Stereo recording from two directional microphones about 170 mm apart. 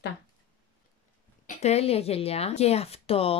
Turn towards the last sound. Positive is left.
turn(degrees=35)  # may be behind; listen again after turning